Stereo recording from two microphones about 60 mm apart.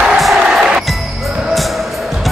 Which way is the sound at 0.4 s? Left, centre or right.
Centre.